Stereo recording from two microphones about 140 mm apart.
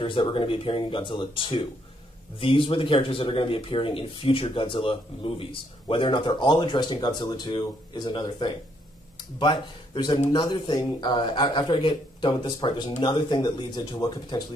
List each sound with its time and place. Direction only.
0.0 s speech: 35° left (ahead or behind)